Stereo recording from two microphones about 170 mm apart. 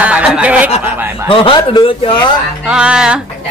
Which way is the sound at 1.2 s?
30° left (ahead or behind).